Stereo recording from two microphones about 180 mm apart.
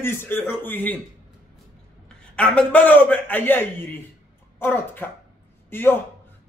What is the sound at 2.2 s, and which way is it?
A man's voice, 5° left (ahead or behind).